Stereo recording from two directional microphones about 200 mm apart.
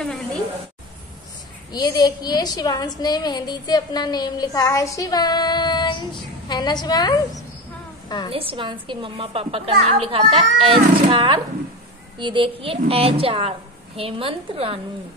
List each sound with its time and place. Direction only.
0.0 s a sound: centre (ahead or behind)
1.7 s a woman's voice: 20° left (ahead or behind)
8.3 s a woman's voice: 25° right (ahead or behind)